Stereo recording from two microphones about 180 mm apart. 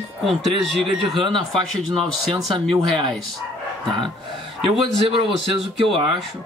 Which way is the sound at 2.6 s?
Centre (ahead or behind).